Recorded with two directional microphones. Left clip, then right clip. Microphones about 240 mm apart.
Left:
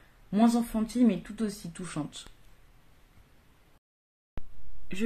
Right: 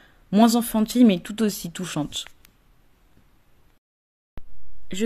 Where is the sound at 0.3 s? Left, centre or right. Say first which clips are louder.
Right 7 dB; right.